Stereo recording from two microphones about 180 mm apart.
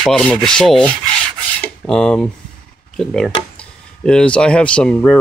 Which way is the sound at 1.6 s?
5° left (ahead or behind).